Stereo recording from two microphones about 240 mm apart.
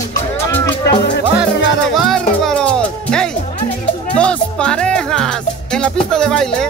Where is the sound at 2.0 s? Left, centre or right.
Centre.